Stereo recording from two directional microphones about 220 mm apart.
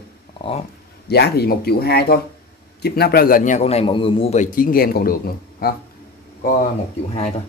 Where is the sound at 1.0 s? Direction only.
45° left (ahead or behind).